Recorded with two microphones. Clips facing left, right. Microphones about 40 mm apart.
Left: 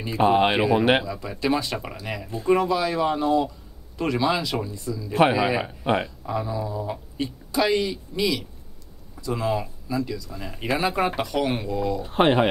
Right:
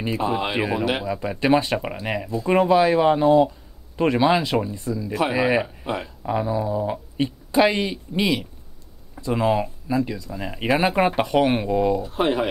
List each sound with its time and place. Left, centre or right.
0.2 s speech: left
1.0 s speech: right
5.9 s speech: left
6.2 s speech: right
12.1 s speech: left